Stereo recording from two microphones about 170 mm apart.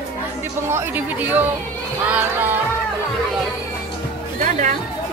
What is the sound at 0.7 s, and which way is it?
Speech, 15° right (ahead or behind).